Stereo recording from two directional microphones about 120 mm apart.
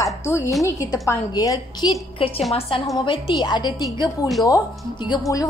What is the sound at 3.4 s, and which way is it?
Speech, 35° left (ahead or behind).